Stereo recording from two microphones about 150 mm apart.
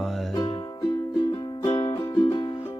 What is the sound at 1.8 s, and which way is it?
Music, 30° left (ahead or behind).